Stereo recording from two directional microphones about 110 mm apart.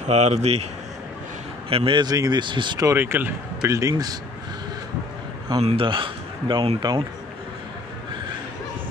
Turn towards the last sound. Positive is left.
turn(degrees=-40)  # may be behind; listen again after turning